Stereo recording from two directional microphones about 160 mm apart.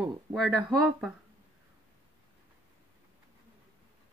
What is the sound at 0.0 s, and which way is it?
Speech, centre (ahead or behind).